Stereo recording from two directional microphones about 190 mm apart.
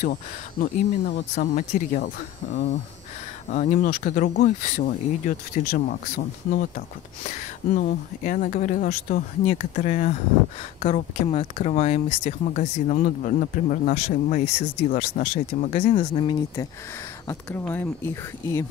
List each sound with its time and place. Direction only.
0.0 s speech: 45° left (ahead or behind)
15.8 s speech: 30° left (ahead or behind)
17.3 s speech: 10° left (ahead or behind)